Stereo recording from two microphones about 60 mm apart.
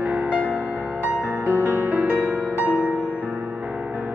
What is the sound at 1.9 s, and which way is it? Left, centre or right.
Music, right.